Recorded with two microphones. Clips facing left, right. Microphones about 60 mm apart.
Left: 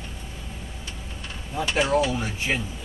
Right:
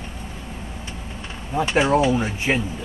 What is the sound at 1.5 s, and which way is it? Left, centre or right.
A woman's voice, right.